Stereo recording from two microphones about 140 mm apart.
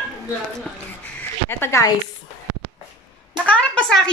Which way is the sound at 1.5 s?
20° left (ahead or behind).